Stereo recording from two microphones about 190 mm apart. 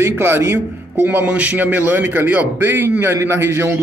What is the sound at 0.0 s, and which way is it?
Speech, 15° right (ahead or behind).